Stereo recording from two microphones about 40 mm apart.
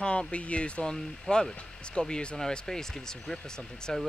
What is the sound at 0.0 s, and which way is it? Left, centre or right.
Speech, left.